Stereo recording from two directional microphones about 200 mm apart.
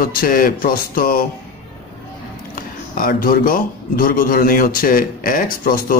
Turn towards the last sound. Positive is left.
turn(degrees=45)  # may be behind; listen again after turning